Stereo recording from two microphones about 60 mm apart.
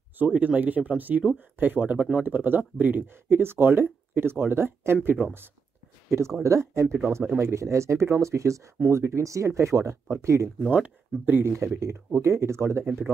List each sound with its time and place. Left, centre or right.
0.2 s speech: right
6.0 s speech: right
10.7 s speech: right
11.4 s speech: right